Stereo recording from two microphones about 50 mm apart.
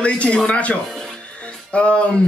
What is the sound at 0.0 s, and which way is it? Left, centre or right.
Speech, left.